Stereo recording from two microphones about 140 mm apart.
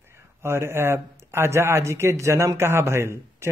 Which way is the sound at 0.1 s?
20° right (ahead or behind).